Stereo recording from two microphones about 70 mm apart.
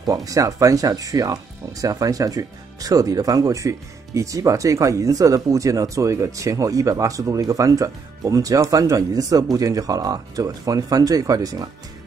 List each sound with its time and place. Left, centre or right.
0.0 s speech: right